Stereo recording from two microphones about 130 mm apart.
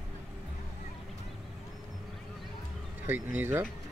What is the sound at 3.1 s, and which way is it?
Speech, 15° right (ahead or behind).